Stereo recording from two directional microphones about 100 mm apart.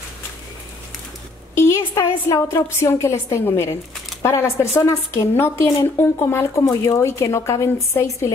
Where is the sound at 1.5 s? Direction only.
30° left (ahead or behind).